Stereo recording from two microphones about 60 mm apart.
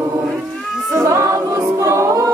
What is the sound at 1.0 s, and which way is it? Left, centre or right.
A capella, right.